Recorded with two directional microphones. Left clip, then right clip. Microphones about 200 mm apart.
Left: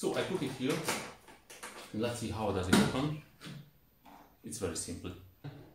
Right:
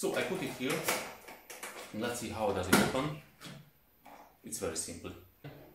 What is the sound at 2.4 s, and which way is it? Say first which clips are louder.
Speech: right 3 dB; 25° left (ahead or behind).